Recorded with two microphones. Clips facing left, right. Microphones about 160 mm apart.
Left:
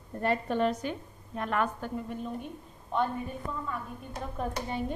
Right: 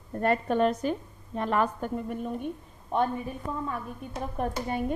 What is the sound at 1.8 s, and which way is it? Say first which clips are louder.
Speech: right 4 dB; 50° right (ahead or behind).